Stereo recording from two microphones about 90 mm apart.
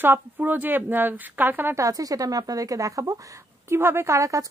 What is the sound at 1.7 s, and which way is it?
Speech, 40° right (ahead or behind).